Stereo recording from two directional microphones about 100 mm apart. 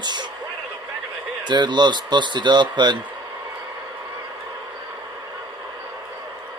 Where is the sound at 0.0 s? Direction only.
50° right (ahead or behind).